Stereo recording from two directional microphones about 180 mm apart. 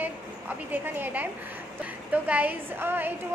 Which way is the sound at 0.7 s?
10° right (ahead or behind).